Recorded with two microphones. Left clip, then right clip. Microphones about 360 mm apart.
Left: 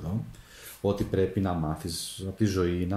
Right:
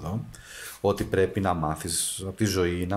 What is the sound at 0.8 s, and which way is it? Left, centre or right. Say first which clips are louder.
Speech: right 3 dB; right.